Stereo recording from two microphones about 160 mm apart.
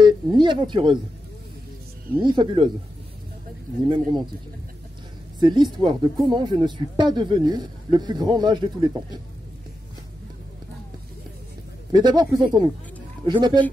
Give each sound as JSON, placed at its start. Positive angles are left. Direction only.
{"t": 0.0, "sound": "speech", "side_deg": -30}
{"t": 2.1, "sound": "speech", "side_deg": -30}
{"t": 3.9, "sound": "speech", "side_deg": -25}
{"t": 5.4, "sound": "speech", "side_deg": -30}
{"t": 11.9, "sound": "speech", "side_deg": -25}